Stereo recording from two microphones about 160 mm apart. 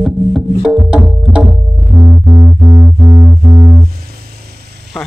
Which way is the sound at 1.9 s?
20° right (ahead or behind).